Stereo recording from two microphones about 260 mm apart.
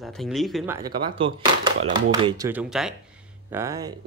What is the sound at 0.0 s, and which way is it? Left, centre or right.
Speech, centre.